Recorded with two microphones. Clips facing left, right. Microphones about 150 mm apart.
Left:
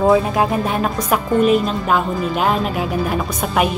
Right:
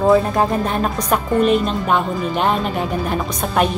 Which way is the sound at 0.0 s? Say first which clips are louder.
Even; centre (ahead or behind).